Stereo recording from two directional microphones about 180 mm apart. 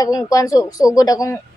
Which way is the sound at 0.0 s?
20° left (ahead or behind).